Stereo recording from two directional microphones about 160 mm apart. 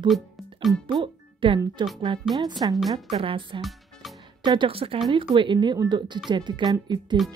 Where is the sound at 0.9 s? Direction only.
30° right (ahead or behind).